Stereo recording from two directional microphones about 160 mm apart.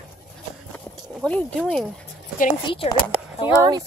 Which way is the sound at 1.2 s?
10° left (ahead or behind).